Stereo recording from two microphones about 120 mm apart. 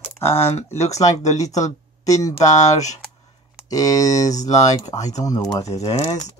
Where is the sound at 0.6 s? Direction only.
65° left (ahead or behind).